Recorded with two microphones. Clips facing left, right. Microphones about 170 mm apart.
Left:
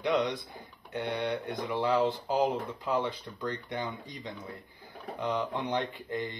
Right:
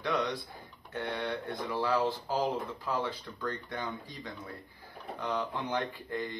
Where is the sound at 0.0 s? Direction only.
20° left (ahead or behind).